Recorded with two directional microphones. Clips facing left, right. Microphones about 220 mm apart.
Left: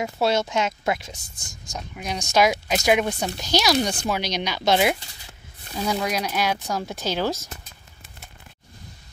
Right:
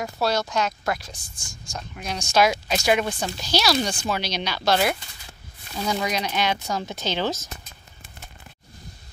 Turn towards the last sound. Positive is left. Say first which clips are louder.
# left 1 dB
turn(degrees=10)  # may be behind; listen again after turning